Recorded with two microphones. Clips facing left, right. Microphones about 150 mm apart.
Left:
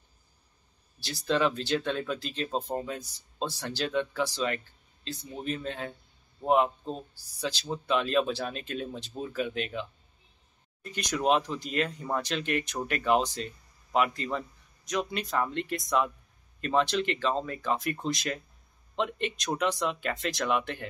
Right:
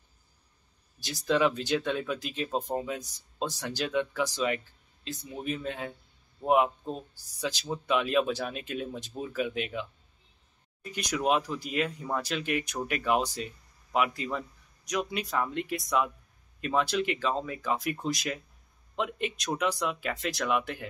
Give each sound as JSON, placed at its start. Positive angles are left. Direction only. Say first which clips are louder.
{"t": 0.9, "sound": "speech", "louder": "right 1 dB", "side_deg": -15}
{"t": 3.0, "sound": "speech", "louder": "even", "side_deg": -15}